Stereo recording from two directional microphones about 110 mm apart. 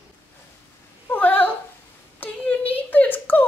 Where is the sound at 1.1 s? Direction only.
15° left (ahead or behind).